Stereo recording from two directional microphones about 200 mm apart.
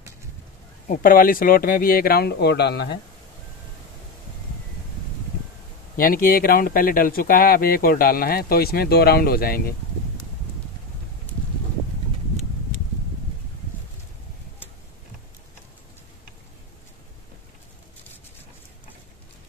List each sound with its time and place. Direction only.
0.8 s speech: 40° left (ahead or behind)
5.9 s speech: 45° left (ahead or behind)